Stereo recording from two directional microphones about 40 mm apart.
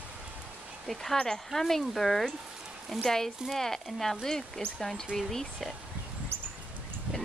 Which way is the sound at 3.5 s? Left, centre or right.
Centre.